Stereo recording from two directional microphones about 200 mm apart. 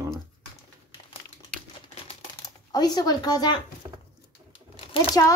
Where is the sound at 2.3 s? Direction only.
20° left (ahead or behind).